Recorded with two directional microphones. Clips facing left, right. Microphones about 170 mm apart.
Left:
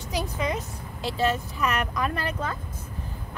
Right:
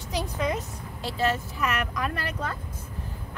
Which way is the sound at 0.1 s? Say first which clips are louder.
Even; 10° left (ahead or behind).